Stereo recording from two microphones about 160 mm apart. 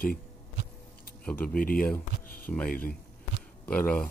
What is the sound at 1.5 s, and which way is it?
Speech, 65° left (ahead or behind).